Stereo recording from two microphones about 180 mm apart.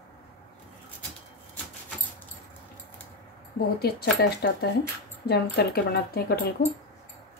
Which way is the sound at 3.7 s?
60° left (ahead or behind).